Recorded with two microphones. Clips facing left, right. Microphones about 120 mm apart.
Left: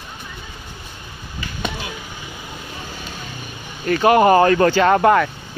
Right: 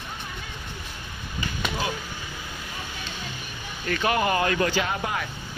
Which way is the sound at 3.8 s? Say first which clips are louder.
Left 11 dB; 40° left (ahead or behind).